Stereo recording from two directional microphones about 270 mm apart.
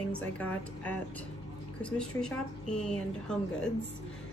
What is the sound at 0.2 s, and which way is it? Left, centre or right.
A woman's voice, centre.